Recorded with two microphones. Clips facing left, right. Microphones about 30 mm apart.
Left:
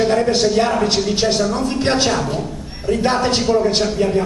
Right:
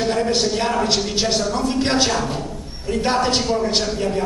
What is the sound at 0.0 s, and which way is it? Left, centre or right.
A man's voice, centre.